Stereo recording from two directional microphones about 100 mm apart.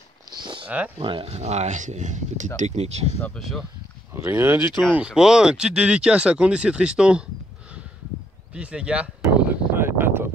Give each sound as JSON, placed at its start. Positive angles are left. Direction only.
{"t": 0.4, "sound": "a sound", "side_deg": -55}
{"t": 0.7, "sound": "speech", "side_deg": -15}
{"t": 0.9, "sound": "speech", "side_deg": -65}
{"t": 2.7, "sound": "speech", "side_deg": -90}
{"t": 3.3, "sound": "speech", "side_deg": 0}
{"t": 4.1, "sound": "speech", "side_deg": -20}
{"t": 4.9, "sound": "speech", "side_deg": -10}
{"t": 8.5, "sound": "a sound", "side_deg": -10}